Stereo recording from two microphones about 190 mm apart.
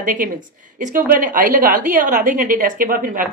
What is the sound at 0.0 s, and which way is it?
A woman's voice, 45° right (ahead or behind).